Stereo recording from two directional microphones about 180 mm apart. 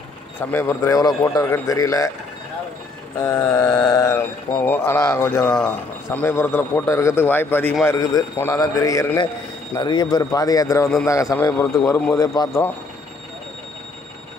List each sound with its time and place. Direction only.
0.4 s mantra: 15° left (ahead or behind)
3.2 s mantra: 15° left (ahead or behind)
7.8 s a man's voice: 15° left (ahead or behind)
11.1 s mantra: 15° left (ahead or behind)